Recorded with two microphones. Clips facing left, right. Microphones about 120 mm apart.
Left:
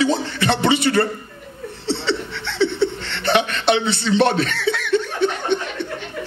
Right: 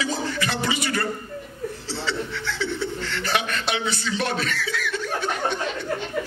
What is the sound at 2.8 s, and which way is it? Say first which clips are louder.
Chuckle: left 6 dB; 25° left (ahead or behind).